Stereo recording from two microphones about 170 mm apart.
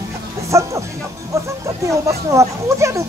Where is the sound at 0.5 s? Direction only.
15° right (ahead or behind).